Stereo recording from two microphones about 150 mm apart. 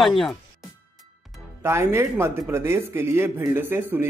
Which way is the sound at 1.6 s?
15° right (ahead or behind).